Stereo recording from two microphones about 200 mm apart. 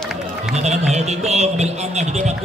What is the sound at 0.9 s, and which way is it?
Speech, 30° right (ahead or behind).